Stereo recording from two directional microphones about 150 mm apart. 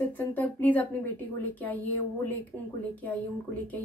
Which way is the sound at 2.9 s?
10° left (ahead or behind).